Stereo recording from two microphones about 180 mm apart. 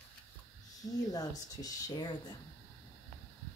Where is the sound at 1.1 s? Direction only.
20° left (ahead or behind).